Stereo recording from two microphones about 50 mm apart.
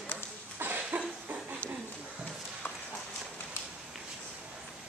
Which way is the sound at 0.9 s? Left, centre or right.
Right.